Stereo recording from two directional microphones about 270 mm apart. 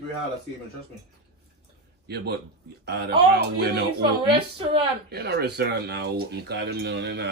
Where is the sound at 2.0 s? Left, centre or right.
Right.